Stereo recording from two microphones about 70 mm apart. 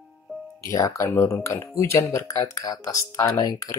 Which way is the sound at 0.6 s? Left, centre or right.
Left.